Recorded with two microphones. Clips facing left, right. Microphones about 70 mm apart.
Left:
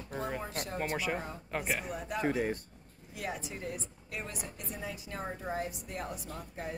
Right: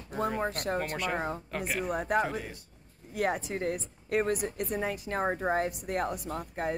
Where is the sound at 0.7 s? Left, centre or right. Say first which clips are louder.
Right 2 dB; centre.